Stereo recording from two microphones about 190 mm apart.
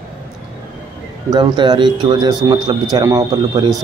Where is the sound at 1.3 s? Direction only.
25° right (ahead or behind).